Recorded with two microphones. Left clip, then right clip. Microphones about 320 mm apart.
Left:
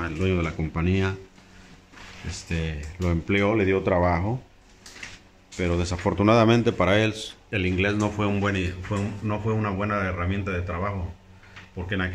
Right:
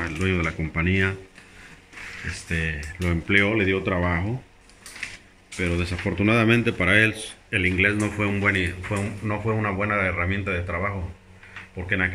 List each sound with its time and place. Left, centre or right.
0.0 s speech: centre
2.4 s speech: centre
5.6 s speech: centre